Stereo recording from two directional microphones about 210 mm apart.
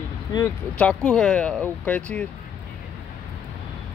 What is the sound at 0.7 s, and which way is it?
Speech, 5° left (ahead or behind).